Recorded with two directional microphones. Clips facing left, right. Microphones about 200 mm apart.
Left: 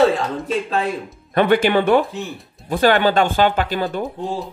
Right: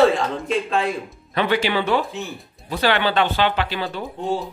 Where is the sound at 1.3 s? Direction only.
50° left (ahead or behind).